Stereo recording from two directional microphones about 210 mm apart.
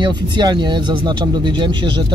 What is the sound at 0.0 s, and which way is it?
Speech, 20° right (ahead or behind).